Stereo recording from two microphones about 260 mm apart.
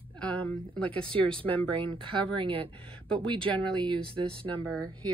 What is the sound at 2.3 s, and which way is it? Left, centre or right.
Speech, centre.